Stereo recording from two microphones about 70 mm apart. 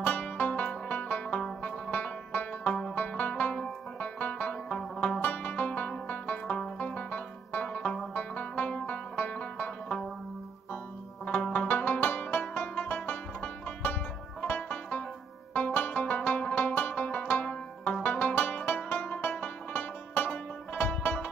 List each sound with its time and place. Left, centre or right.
0.4 s music: left
8.1 s music: left
11.2 s music: centre